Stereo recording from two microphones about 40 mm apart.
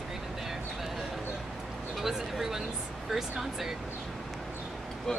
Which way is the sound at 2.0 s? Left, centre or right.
Centre.